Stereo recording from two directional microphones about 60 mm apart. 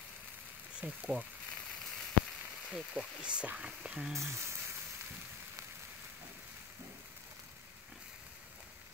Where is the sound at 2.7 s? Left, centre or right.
Centre.